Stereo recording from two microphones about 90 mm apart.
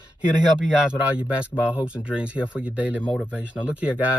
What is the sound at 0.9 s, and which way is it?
Speech, 15° right (ahead or behind).